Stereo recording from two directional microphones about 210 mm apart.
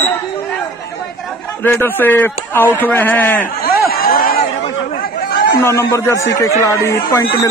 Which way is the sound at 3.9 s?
45° left (ahead or behind).